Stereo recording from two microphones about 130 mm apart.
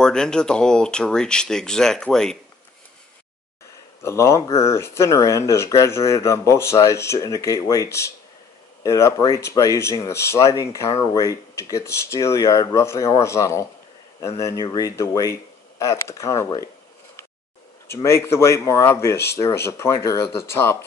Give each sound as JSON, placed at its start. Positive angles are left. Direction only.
{"t": 0.0, "sound": "speech", "side_deg": 5}
{"t": 4.0, "sound": "speech", "side_deg": 20}
{"t": 17.8, "sound": "speech", "side_deg": 20}